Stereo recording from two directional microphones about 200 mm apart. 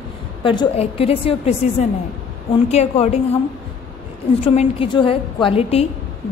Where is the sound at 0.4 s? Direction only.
25° left (ahead or behind).